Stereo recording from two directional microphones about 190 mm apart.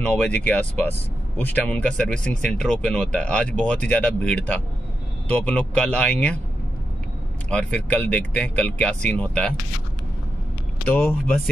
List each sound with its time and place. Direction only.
0.0 s speech: 5° left (ahead or behind)
7.4 s speech: 5° left (ahead or behind)
10.9 s speech: 10° left (ahead or behind)